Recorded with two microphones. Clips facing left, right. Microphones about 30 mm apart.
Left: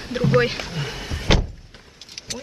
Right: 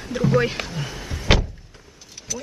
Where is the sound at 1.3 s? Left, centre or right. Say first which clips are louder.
Right 1 dB; centre.